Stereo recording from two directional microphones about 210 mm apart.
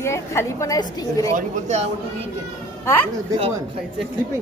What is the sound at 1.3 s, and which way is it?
Speech, 35° right (ahead or behind).